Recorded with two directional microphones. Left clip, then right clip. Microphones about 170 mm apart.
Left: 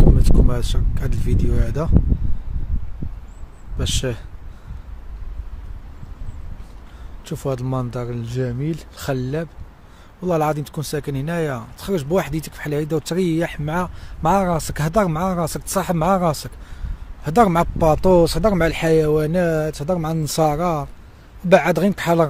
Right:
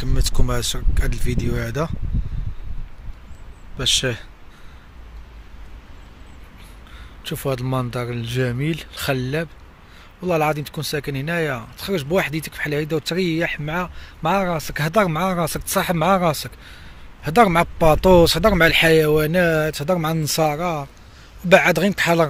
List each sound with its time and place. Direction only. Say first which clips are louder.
0.2 s speech: even; centre (ahead or behind)
3.7 s speech: right 5 dB; 5° left (ahead or behind)
7.2 s speech: right 1 dB; 10° left (ahead or behind); by 8.8 s 5° right (ahead or behind)
8.9 s speech: right 2 dB; 5° left (ahead or behind); by 14.9 s 25° left (ahead or behind)
14.9 s speech: right 1 dB; 15° left (ahead or behind)
20.2 s speech: left 3 dB; 20° left (ahead or behind)
21.5 s speech: right 1 dB; 10° left (ahead or behind)